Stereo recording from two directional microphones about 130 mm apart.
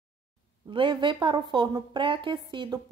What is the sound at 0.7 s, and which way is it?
A woman's voice, 40° right (ahead or behind).